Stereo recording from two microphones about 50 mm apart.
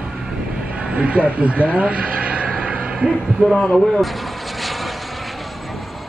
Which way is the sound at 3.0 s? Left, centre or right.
Centre.